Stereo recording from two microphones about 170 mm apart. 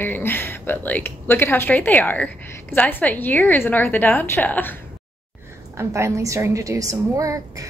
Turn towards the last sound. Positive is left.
turn(degrees=-20)  # may be behind; listen again after turning